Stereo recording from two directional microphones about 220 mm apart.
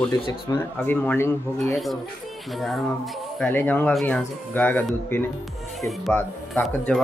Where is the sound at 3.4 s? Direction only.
10° left (ahead or behind).